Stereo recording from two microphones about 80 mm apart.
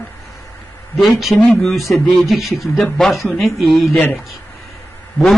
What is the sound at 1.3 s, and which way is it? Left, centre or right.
Speech, centre.